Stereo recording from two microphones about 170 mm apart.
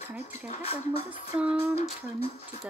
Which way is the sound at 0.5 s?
35° left (ahead or behind).